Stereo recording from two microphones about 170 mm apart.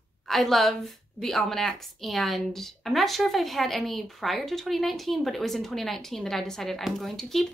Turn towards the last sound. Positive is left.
turn(degrees=0)  # may be behind; listen again after turning